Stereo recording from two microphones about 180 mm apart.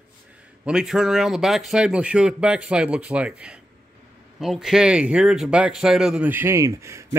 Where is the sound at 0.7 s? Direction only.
5° right (ahead or behind).